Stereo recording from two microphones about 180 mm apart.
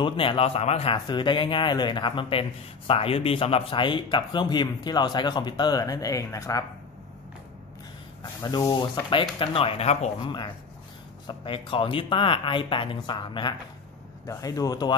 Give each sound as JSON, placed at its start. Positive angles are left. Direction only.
{"t": 0.0, "sound": "speech", "side_deg": 30}
{"t": 8.2, "sound": "speech", "side_deg": 20}